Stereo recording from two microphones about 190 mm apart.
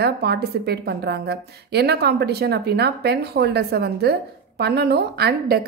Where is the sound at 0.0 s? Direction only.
60° right (ahead or behind).